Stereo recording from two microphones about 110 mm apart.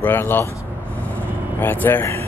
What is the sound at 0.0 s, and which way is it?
Speech, 20° left (ahead or behind).